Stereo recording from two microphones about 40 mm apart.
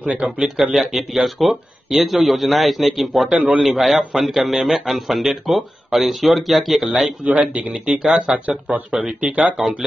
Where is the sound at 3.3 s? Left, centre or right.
Right.